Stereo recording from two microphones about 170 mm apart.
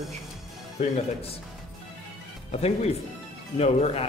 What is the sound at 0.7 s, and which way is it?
Speech, 40° left (ahead or behind).